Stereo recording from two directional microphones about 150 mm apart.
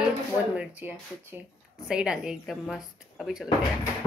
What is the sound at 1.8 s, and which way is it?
A woman's voice, 5° right (ahead or behind).